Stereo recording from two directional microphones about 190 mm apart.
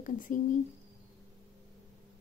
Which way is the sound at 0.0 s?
45° left (ahead or behind).